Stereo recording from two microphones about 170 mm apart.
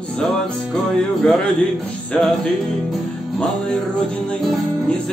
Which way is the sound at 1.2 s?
5° left (ahead or behind).